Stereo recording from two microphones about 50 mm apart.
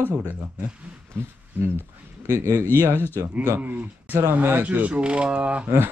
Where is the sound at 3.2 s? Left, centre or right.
Right.